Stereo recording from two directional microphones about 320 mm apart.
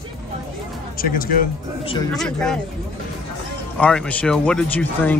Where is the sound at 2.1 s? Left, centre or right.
Centre.